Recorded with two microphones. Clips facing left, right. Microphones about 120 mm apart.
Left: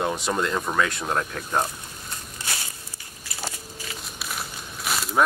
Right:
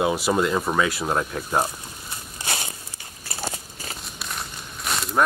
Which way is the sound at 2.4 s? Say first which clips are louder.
Right 5 dB; 25° right (ahead or behind).